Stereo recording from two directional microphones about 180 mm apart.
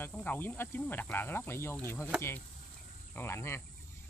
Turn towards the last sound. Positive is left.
turn(degrees=15)  # may be behind; listen again after turning